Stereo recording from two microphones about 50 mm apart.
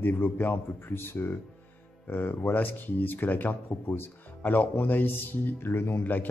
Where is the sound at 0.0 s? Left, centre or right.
Left.